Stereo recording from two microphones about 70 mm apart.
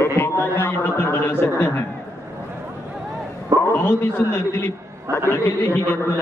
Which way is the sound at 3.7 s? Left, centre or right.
Left.